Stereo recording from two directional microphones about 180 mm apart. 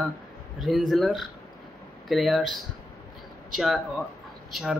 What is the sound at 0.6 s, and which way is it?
Speech, centre (ahead or behind).